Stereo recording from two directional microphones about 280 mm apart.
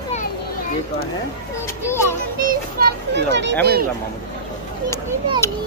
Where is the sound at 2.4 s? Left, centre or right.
Right.